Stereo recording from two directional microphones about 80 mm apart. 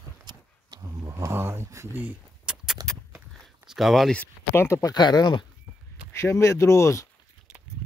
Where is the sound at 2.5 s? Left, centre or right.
Centre.